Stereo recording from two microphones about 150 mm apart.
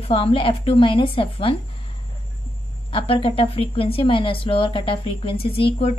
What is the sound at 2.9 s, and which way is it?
A woman's voice, 35° left (ahead or behind).